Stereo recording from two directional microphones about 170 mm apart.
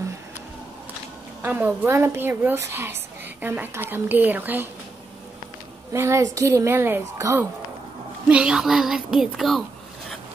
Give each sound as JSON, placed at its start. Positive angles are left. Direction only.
{"t": 1.4, "sound": "a woman's voice", "side_deg": -10}
{"t": 5.9, "sound": "a woman's voice", "side_deg": -15}